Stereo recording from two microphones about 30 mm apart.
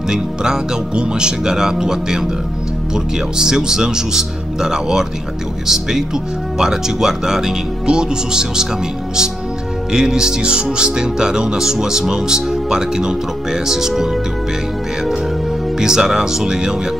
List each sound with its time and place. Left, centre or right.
0.1 s music: right
5.7 s speech: centre
7.8 s music: right
9.9 s music: right
15.8 s music: centre